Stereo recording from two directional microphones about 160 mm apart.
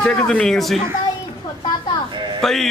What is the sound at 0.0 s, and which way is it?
Speech, 5° left (ahead or behind).